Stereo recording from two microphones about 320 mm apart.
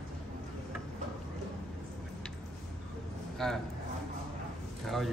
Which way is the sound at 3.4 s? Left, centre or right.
Centre.